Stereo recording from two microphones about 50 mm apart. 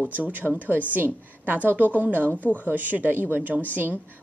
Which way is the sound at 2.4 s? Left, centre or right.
Left.